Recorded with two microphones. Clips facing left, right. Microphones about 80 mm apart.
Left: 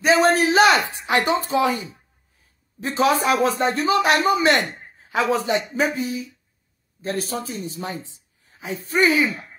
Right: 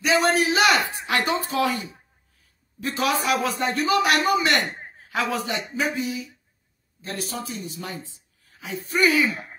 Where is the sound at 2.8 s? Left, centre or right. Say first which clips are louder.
Left 5 dB; left.